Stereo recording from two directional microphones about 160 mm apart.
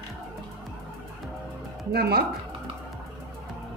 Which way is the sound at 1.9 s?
80° right.